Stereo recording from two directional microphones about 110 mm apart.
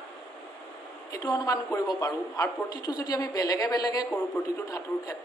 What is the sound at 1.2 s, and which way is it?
Speech, 30° left (ahead or behind).